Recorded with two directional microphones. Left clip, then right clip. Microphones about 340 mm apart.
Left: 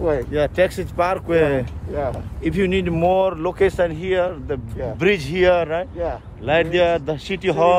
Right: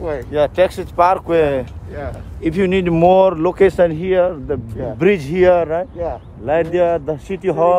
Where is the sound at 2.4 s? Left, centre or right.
Centre.